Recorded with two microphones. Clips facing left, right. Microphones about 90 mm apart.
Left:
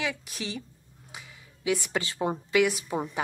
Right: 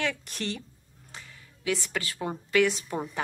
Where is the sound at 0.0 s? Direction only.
5° left (ahead or behind).